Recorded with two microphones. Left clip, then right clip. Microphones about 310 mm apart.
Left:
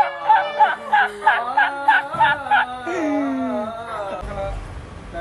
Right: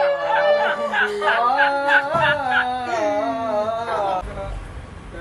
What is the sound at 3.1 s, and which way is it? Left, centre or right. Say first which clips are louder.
Music: right 1 dB; right.